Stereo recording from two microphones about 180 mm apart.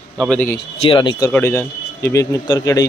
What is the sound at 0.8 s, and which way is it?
Speech, 30° left (ahead or behind).